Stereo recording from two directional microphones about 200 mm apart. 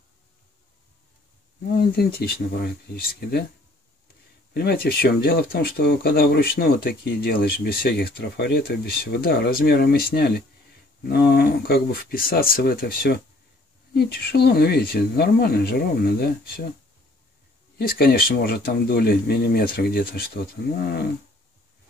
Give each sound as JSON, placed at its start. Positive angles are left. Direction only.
{"t": 1.8, "sound": "speech", "side_deg": 50}
{"t": 4.6, "sound": "speech", "side_deg": 50}
{"t": 17.7, "sound": "speech", "side_deg": 50}